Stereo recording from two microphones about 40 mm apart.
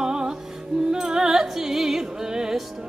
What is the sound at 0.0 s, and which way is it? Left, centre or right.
Music, centre.